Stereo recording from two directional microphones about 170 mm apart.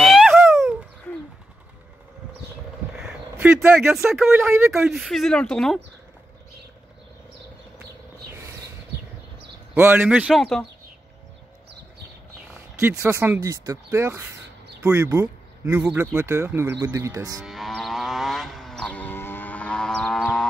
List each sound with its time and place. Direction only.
0.0 s a sound: centre (ahead or behind)
3.0 s a sound: 5° right (ahead or behind)
4.1 s speech: 10° right (ahead or behind)
4.7 s speech: 5° right (ahead or behind)
9.8 s speech: 10° right (ahead or behind)
12.7 s speech: 15° right (ahead or behind)
17.4 s livestock: centre (ahead or behind)